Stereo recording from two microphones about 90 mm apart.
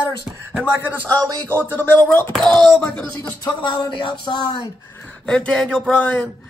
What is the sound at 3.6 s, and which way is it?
Speech, 55° left (ahead or behind).